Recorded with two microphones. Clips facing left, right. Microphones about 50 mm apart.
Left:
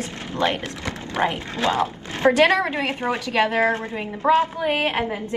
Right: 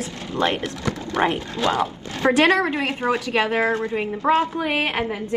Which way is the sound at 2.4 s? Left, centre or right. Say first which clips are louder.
Right 2 dB; right.